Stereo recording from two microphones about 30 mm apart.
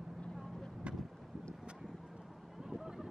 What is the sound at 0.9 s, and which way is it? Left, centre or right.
Vehicle, right.